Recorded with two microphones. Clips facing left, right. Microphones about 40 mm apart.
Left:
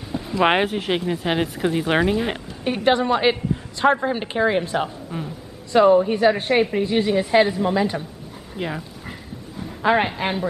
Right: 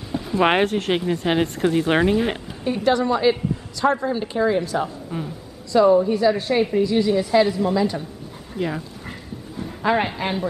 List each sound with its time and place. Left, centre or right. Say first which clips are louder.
0.4 s speech: even; centre
2.6 s a woman's voice: left 1 dB; left
5.1 s speech: right 1 dB; centre
5.7 s a woman's voice: left 1 dB; left; by 8.7 s centre
9.8 s speech: left 2 dB; centre